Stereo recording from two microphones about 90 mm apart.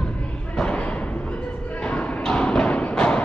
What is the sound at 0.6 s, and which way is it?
Thump, 10° left (ahead or behind).